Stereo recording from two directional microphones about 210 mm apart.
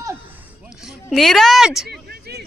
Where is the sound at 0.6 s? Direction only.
Centre (ahead or behind).